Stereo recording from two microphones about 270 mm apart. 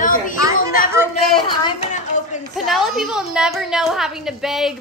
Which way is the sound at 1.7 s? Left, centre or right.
Left.